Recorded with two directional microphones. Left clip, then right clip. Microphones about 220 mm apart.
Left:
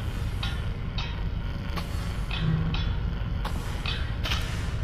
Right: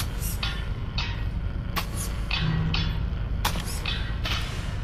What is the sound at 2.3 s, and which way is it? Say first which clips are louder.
Music: right 5 dB; 25° right (ahead or behind).